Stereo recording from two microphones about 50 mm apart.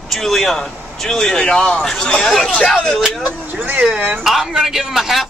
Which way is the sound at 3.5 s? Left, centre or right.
Right.